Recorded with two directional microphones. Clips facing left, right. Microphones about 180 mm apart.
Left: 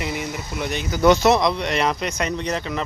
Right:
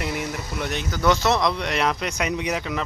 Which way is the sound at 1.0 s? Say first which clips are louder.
Left 5 dB; 15° left (ahead or behind).